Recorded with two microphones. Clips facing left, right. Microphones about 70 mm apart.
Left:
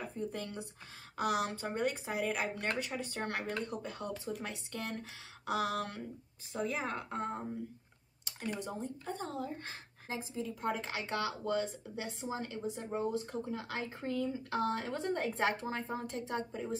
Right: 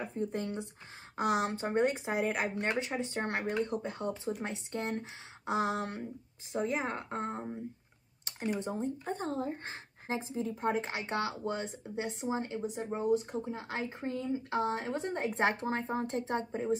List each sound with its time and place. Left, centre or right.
0.0 s speech: right
8.5 s speech: right